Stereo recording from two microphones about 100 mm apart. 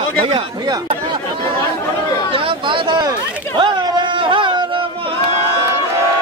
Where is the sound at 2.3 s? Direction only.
60° right (ahead or behind).